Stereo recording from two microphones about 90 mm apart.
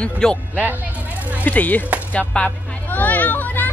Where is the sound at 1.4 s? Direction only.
20° left (ahead or behind).